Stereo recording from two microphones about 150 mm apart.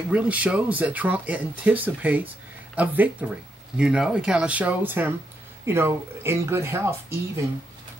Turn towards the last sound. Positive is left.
turn(degrees=-20)  # may be behind; listen again after turning